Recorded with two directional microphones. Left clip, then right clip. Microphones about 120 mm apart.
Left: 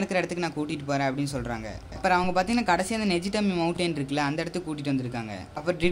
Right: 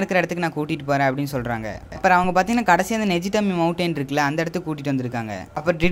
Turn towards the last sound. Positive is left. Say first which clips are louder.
# right 5 dB
turn(degrees=-40)  # may be behind; listen again after turning